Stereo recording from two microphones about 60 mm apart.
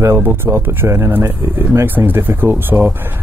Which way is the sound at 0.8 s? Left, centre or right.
Right.